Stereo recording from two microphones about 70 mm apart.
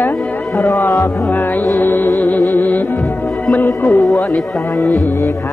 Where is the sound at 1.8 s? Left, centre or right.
Left.